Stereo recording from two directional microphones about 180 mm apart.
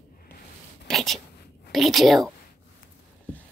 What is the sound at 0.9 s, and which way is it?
A child's voice, centre (ahead or behind).